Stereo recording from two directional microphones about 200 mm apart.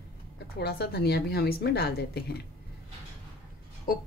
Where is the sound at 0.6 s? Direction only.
50° left (ahead or behind).